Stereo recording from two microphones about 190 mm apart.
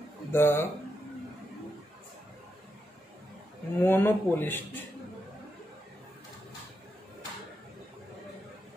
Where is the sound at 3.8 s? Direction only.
10° left (ahead or behind).